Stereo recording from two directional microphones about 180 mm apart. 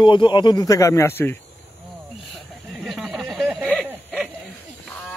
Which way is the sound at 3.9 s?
10° right (ahead or behind).